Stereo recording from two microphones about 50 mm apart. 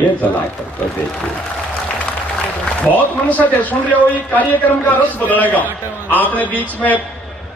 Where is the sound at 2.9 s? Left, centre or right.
Left.